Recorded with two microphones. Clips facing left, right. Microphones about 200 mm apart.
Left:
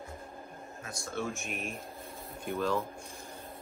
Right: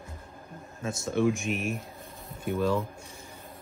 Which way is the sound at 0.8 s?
20° right (ahead or behind).